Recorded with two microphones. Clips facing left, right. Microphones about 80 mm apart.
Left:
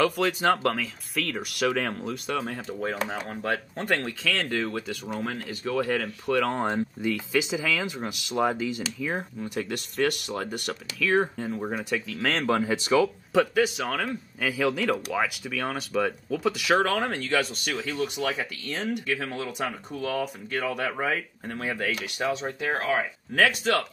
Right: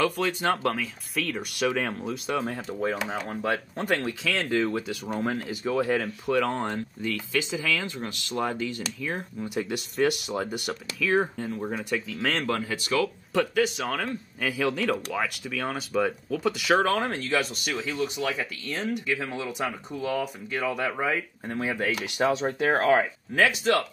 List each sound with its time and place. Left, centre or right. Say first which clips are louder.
0.0 s speech: left 2 dB; centre
6.6 s speech: left 4 dB; centre
9.4 s speech: right 1 dB; centre
12.4 s speech: left 4 dB; centre
12.9 s speech: left 3 dB; centre
21.5 s speech: right 2 dB; centre
22.2 s speech: right 5 dB; right
22.7 s speech: right 5 dB; right
23.3 s speech: even; centre